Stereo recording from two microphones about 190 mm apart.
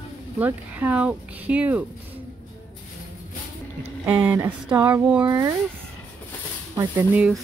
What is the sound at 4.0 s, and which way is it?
Speech, 10° right (ahead or behind).